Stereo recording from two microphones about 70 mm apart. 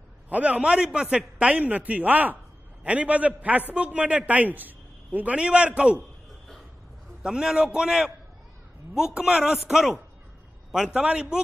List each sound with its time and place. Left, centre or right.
0.3 s a man's voice: centre
7.2 s a man's voice: centre